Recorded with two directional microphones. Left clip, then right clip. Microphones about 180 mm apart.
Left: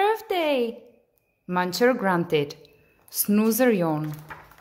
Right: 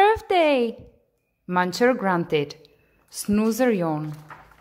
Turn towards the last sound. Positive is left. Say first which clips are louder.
# even
turn(degrees=-5)  # may be behind; listen again after turning